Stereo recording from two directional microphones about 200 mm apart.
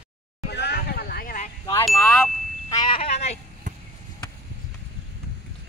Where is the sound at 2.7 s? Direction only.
25° left (ahead or behind).